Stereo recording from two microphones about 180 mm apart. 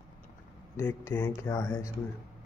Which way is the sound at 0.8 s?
15° left (ahead or behind).